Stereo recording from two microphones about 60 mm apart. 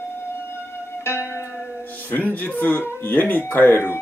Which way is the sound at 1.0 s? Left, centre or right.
Left.